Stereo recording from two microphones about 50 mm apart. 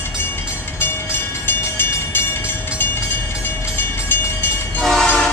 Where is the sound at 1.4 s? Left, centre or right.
Left.